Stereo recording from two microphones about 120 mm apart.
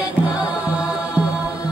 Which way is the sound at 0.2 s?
10° right (ahead or behind).